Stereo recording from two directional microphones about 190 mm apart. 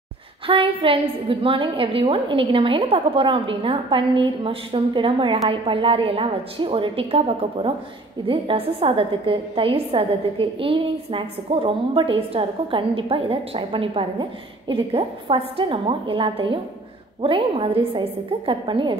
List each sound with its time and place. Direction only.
0.5 s a woman's voice: 30° right (ahead or behind)